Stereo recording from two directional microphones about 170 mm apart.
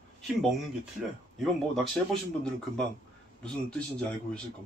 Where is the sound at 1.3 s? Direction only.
Centre (ahead or behind).